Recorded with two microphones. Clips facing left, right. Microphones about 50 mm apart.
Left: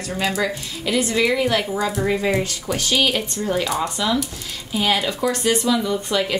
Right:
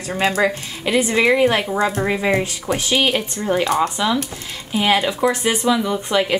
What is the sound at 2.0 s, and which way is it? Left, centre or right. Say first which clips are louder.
Speech: right 1 dB; right.